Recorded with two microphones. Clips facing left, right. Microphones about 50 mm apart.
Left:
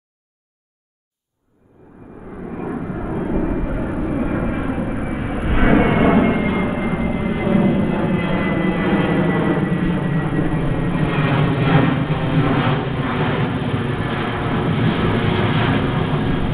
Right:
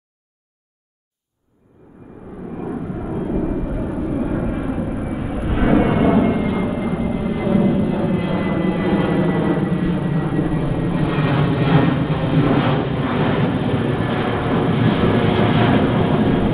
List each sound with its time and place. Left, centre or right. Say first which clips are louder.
2.6 s vehicle: left 1 dB; left; by 16.4 s centre